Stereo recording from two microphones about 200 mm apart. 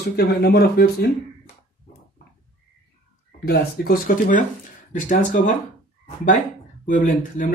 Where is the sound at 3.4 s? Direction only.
50° left (ahead or behind).